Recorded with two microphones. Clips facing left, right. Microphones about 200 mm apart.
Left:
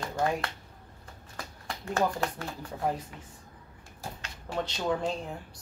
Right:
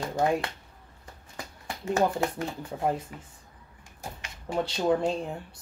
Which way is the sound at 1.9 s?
20° right (ahead or behind).